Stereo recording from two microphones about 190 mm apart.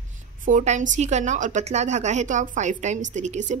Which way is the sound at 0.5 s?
40° right (ahead or behind).